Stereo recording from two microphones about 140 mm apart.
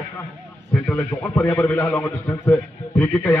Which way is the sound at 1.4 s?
20° left (ahead or behind).